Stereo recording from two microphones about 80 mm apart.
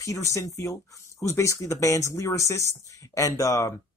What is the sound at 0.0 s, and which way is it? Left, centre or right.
Speech, left.